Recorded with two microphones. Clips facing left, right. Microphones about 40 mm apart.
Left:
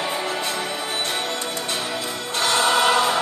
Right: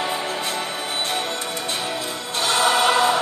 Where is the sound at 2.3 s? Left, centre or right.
Left.